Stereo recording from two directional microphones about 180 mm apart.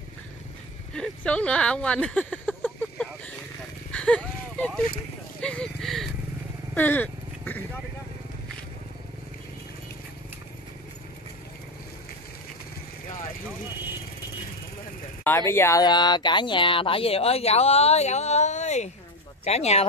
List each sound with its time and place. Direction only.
0.9 s speech: 5° left (ahead or behind)
3.9 s a sound: 5° left (ahead or behind)
5.4 s speech: 5° left (ahead or behind)
6.7 s vehicle: 10° left (ahead or behind)
15.2 s speech: 15° left (ahead or behind); by 19.9 s 35° left (ahead or behind)